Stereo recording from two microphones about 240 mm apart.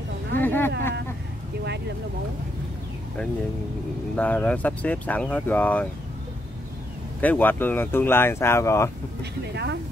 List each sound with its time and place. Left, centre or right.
0.4 s speech: centre
1.6 s speech: right
4.1 s speech: centre
7.2 s speech: centre
9.2 s speech: right